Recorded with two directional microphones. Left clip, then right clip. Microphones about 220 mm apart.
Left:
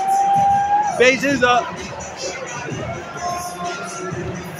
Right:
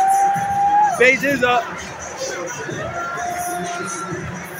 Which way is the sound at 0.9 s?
10° left (ahead or behind).